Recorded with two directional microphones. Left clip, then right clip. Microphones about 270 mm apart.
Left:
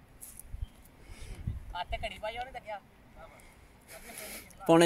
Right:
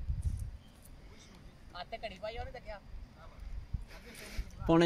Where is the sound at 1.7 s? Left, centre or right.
Centre.